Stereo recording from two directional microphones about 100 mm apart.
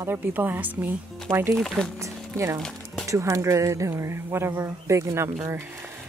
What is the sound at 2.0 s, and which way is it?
Speech, 30° right (ahead or behind).